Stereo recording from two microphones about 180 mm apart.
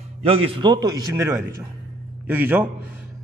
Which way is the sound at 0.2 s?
35° right (ahead or behind).